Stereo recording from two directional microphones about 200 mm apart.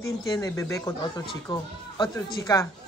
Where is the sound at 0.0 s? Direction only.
15° left (ahead or behind).